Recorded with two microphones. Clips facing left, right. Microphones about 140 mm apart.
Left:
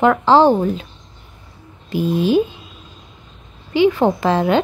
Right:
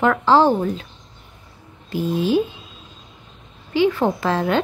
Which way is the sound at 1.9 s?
15° left (ahead or behind).